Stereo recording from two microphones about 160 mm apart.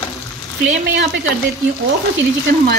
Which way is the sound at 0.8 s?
90° right.